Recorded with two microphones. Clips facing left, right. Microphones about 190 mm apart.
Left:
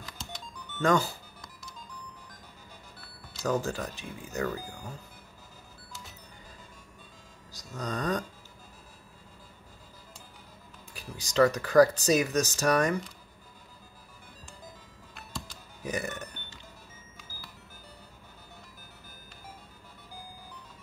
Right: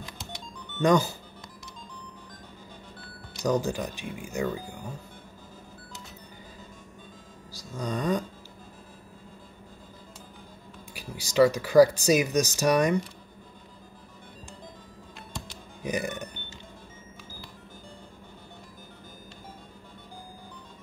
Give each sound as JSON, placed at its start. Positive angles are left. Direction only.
{"t": 0.7, "sound": "speech", "side_deg": -15}
{"t": 3.4, "sound": "speech", "side_deg": -15}
{"t": 7.7, "sound": "speech", "side_deg": -15}
{"t": 11.1, "sound": "speech", "side_deg": -10}
{"t": 15.8, "sound": "speech", "side_deg": -15}